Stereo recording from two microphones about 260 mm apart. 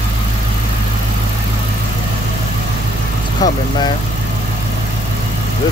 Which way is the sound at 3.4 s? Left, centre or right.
Centre.